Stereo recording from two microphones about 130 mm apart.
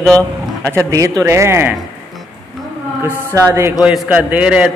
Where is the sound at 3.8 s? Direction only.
5° right (ahead or behind).